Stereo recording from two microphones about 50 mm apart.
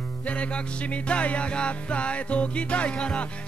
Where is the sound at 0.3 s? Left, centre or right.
Left.